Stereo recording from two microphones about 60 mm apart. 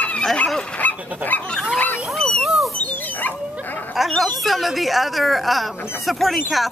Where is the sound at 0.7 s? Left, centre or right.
Left.